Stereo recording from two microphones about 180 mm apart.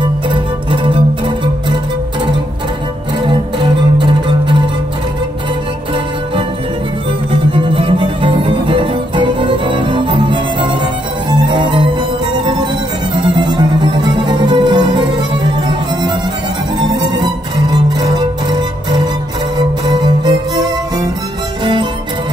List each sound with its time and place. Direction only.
0.0 s music: 25° right (ahead or behind)
3.2 s music: 25° right (ahead or behind)
7.2 s music: 30° right (ahead or behind)
16.9 s music: 25° right (ahead or behind)
19.9 s music: 25° right (ahead or behind)